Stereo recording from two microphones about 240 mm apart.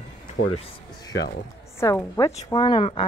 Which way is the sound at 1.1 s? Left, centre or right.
Left.